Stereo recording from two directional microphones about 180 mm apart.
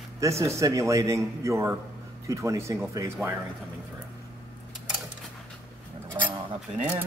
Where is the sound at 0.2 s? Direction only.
15° right (ahead or behind).